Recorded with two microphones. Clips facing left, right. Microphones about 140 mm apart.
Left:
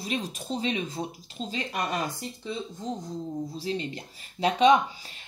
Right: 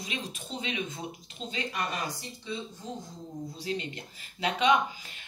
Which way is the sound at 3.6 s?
35° left (ahead or behind).